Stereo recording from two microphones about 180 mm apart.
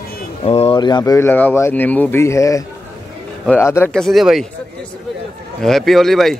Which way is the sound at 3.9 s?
Centre (ahead or behind).